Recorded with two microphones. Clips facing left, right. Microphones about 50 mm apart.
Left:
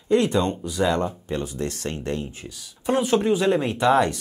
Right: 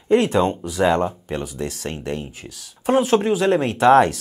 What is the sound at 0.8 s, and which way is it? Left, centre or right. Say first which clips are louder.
Speech: right 4 dB; right.